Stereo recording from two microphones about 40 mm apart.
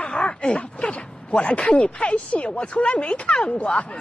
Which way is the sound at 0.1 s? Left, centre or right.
Left.